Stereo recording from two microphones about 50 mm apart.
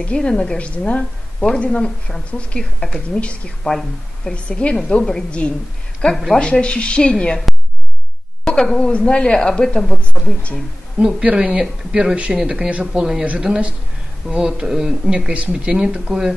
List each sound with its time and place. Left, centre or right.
0.0 s a woman's voice: centre
0.6 s speech: left
3.6 s speech: centre
4.3 s speech: left
8.5 s a woman's voice: centre
10.5 s speech: centre
14.3 s speech: centre